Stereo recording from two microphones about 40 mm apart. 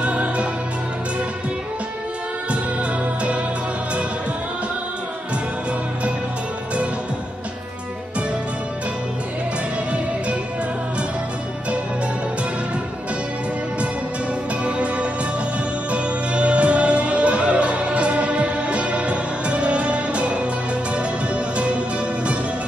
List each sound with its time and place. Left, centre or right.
0.0 s music: right
14.6 s music: right
21.5 s music: right